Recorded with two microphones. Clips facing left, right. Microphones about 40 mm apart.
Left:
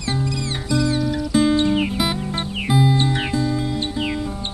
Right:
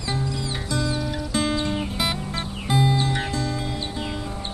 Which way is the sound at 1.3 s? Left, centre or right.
Centre.